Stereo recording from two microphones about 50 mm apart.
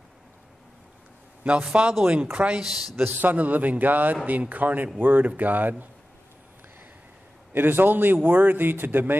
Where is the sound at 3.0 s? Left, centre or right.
Right.